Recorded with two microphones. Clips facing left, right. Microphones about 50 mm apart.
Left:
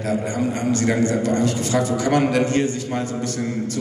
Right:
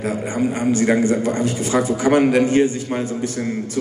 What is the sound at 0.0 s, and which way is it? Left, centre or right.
A man's voice, centre.